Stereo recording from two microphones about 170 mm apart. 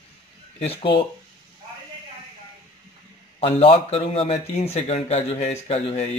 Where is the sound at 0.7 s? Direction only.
30° left (ahead or behind).